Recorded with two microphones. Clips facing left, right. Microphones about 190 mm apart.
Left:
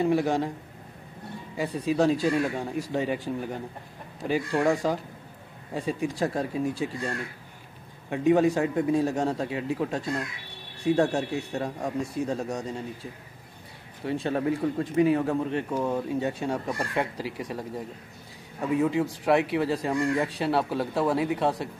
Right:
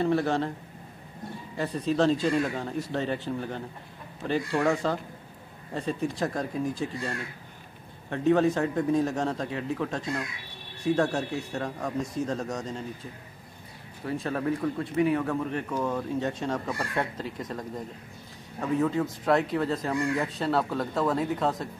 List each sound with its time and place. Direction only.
0.0 s speech: 10° left (ahead or behind)
1.6 s speech: 10° left (ahead or behind)
6.3 s speech: 30° left (ahead or behind)
8.1 s speech: 10° left (ahead or behind)
10.8 s speech: 10° left (ahead or behind)
14.0 s speech: 30° left (ahead or behind)
15.7 s speech: 15° left (ahead or behind)